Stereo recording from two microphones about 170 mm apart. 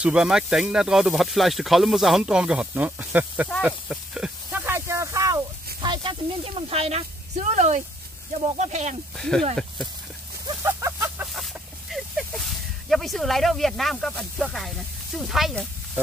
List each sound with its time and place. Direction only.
0.0 s speech: 5° right (ahead or behind)
3.6 s snake: 5° right (ahead or behind)
5.8 s speech: 25° right (ahead or behind)
9.1 s speech: centre (ahead or behind)
10.6 s a sound: 15° right (ahead or behind)
11.3 s a sound: centre (ahead or behind)
12.9 s speech: centre (ahead or behind)